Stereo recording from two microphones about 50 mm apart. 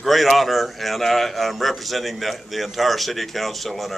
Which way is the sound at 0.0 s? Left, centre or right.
Centre.